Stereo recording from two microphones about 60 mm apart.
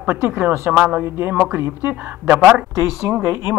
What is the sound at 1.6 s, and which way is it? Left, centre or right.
Speech, right.